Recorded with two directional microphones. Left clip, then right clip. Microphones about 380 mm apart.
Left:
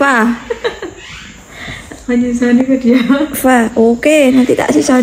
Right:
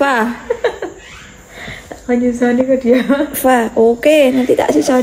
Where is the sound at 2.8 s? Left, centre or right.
Right.